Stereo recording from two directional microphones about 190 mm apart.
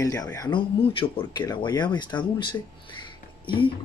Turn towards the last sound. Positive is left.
turn(degrees=25)  # may be behind; listen again after turning